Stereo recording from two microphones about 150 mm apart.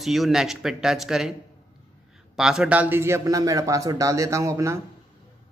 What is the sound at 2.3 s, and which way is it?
A man's voice, 5° right (ahead or behind).